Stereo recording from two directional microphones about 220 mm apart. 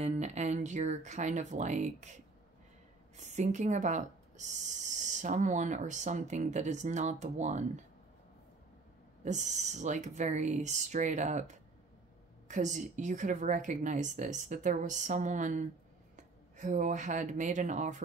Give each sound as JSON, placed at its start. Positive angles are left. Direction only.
{"t": 0.0, "sound": "speech", "side_deg": -30}
{"t": 3.2, "sound": "speech", "side_deg": -30}
{"t": 9.2, "sound": "speech", "side_deg": -30}